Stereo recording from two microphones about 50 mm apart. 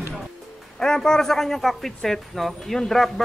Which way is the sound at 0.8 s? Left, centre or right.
Centre.